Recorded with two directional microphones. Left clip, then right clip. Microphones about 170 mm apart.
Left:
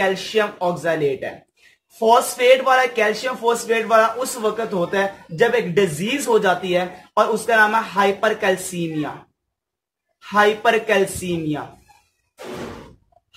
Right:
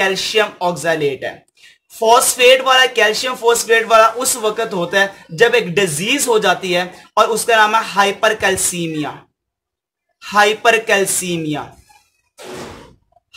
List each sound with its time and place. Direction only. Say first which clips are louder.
0.0 s speech: right 4 dB; 35° right (ahead or behind)
10.2 s speech: right 4 dB; 30° right (ahead or behind)